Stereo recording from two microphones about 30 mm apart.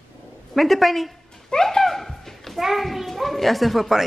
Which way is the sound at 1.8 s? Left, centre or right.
Centre.